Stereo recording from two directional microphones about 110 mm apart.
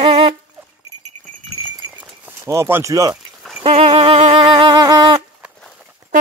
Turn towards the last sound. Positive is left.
turn(degrees=0)  # may be behind; listen again after turning